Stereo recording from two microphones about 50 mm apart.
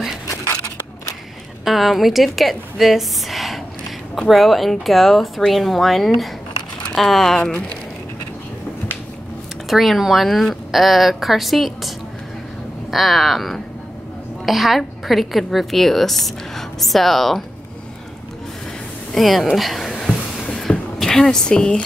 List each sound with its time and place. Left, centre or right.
1.6 s a woman's voice: centre
9.7 s a woman's voice: centre
12.9 s a woman's voice: centre
19.1 s a woman's voice: centre
19.9 s a sound: centre
21.0 s a woman's voice: centre